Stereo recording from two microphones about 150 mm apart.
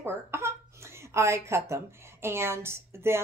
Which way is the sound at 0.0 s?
15° right (ahead or behind).